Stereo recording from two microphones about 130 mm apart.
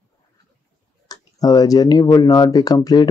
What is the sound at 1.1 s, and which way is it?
Speech, 30° left (ahead or behind).